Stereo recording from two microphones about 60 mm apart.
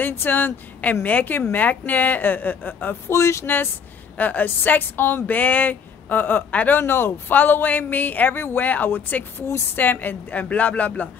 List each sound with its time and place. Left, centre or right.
0.0 s a woman's voice: left
3.1 s speech: left
3.4 s a woman's voice: left
6.8 s a woman's voice: left